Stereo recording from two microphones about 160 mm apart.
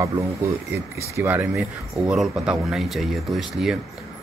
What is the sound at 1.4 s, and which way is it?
Speech, centre (ahead or behind).